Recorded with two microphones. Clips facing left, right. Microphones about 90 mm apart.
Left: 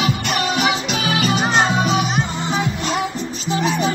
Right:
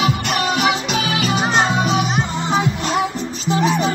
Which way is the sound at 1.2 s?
Centre (ahead or behind).